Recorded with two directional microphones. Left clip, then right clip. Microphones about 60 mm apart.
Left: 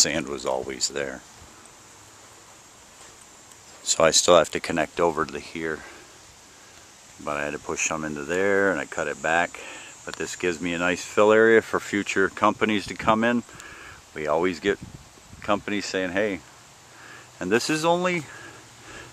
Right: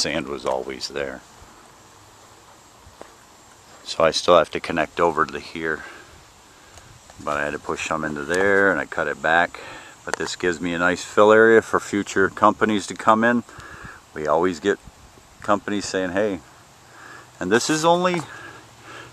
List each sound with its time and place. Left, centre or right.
0.0 s speech: left
3.8 s speech: left
7.2 s speech: centre
9.5 s a sound: centre
10.2 s speech: centre
11.1 s speech: right
11.8 s speech: right
13.4 s a sound: centre
14.2 s speech: right
17.4 s speech: right
18.2 s a sound: centre